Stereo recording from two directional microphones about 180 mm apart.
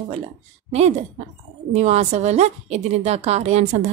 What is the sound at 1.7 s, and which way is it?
A woman's voice, 40° right (ahead or behind).